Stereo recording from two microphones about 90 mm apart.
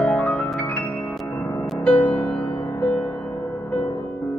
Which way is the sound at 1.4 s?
25° left (ahead or behind).